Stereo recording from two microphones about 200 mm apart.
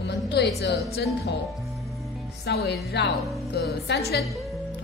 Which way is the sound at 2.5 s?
55° left (ahead or behind).